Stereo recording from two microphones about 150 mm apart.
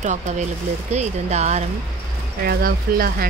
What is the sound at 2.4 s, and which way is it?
Speech, 85° right.